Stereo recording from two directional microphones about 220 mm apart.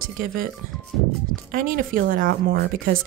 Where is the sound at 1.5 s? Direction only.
40° right (ahead or behind).